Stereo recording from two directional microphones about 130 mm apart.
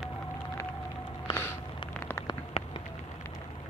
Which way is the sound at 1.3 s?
15° left (ahead or behind).